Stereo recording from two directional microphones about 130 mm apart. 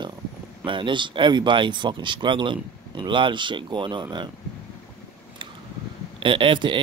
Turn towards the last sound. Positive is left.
turn(degrees=-40)  # may be behind; listen again after turning